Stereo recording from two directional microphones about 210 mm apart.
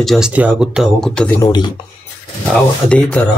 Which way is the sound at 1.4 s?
20° left (ahead or behind).